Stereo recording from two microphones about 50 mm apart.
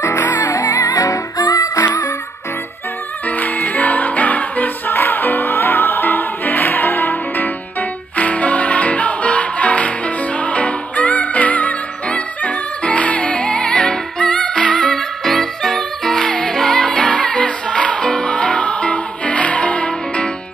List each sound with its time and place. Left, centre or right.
0.0 s music: left
0.5 s music: left
3.3 s music: left
8.2 s music: left